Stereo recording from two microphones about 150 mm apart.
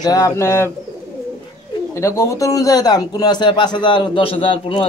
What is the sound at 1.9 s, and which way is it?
A man's voice, 20° left (ahead or behind).